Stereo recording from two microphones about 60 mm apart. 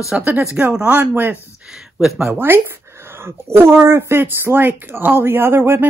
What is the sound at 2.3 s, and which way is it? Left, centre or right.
Speech, right.